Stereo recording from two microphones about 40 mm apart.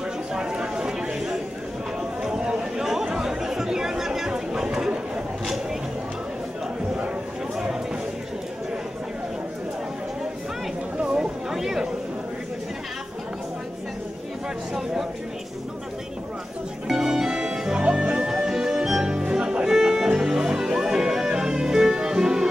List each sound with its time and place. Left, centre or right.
0.3 s a sound: centre
2.8 s chatter: centre
11.0 s chatter: right
11.5 s chatter: centre
16.8 s music: centre